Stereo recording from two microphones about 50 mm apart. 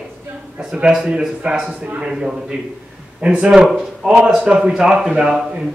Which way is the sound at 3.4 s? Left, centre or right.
Centre.